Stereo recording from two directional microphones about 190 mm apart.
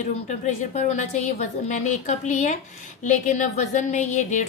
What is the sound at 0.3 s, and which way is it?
A woman's voice, 35° left (ahead or behind).